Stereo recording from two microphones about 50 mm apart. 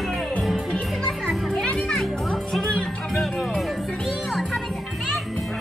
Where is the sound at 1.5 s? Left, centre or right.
Centre.